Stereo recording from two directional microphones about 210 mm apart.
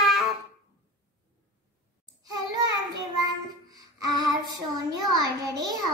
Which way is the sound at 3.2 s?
20° right (ahead or behind).